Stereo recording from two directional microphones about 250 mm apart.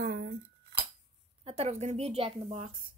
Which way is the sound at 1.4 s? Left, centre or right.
Right.